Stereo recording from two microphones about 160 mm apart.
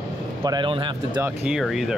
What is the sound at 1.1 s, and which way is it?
Speech, 5° right (ahead or behind).